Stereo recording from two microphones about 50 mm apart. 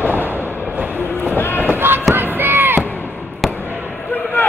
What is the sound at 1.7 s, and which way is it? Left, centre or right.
Run, right.